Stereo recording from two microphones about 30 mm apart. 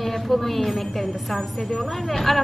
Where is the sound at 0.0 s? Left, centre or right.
Centre.